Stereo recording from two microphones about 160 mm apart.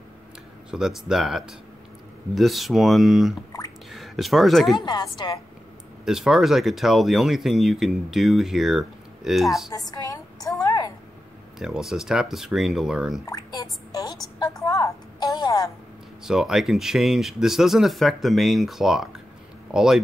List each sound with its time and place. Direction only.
0.7 s speech: 5° right (ahead or behind)
4.7 s a woman's voice: 25° left (ahead or behind)
6.0 s speech: 5° right (ahead or behind)
9.7 s a sound: 20° left (ahead or behind)
11.5 s speech: 5° right (ahead or behind)
13.3 s drip: 25° left (ahead or behind)
16.3 s speech: 5° right (ahead or behind)